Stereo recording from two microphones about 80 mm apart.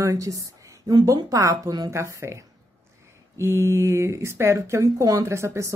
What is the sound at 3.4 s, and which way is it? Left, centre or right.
A woman's voice, right.